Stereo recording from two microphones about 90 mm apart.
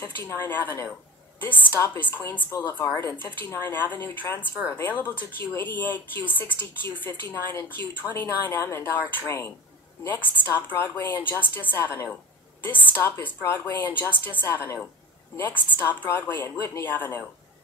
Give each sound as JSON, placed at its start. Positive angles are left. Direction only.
{"t": 0.0, "sound": "speech", "side_deg": 25}
{"t": 12.6, "sound": "a sound", "side_deg": 25}
{"t": 13.2, "sound": "speech", "side_deg": 20}